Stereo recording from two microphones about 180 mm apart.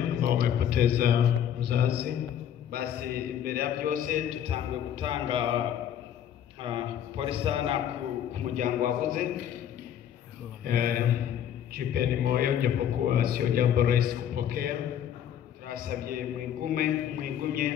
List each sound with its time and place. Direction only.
0.2 s a sound: 60° right (ahead or behind)
2.7 s a man's voice: 60° right (ahead or behind); by 5.5 s 30° right (ahead or behind)
6.6 s a man's voice: 30° right (ahead or behind)
8.5 s a man's voice: 45° right (ahead or behind)
10.6 s a man's voice: 55° right (ahead or behind)